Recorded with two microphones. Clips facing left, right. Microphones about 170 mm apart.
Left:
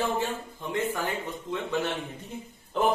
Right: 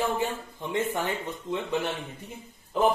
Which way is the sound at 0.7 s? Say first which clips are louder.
Right 1 dB; 25° right (ahead or behind).